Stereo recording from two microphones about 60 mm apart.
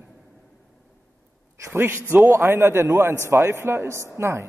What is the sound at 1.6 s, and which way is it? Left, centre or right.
A man's voice, right.